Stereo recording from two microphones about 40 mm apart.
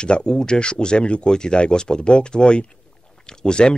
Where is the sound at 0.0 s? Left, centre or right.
Left.